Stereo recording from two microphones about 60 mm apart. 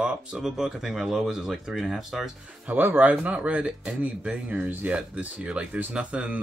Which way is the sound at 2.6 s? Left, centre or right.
Right.